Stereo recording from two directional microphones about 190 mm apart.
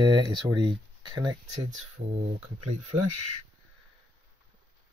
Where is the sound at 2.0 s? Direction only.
55° right (ahead or behind).